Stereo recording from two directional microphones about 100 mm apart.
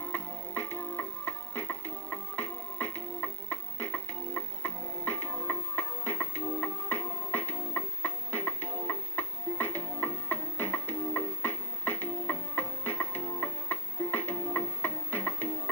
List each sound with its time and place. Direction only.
0.1 s music: 20° left (ahead or behind)